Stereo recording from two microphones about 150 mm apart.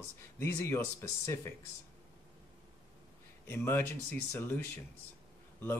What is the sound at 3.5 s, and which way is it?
Speech, 15° left (ahead or behind).